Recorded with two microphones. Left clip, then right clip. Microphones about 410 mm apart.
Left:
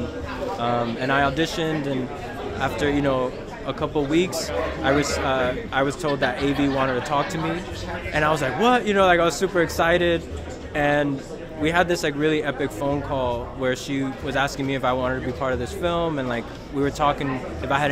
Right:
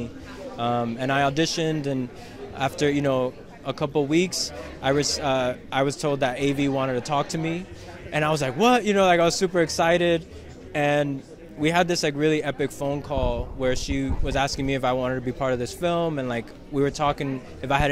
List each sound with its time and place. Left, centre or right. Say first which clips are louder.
0.6 s a man's voice: even; right